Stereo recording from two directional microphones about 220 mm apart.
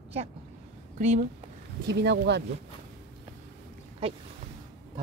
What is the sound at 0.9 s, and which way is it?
Speech, 35° right (ahead or behind).